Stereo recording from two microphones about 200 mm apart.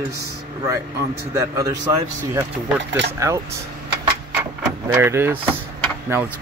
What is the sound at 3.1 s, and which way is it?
Speech, 15° right (ahead or behind).